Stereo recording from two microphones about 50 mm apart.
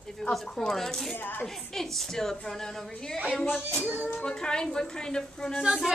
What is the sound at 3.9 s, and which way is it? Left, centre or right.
Speech, left.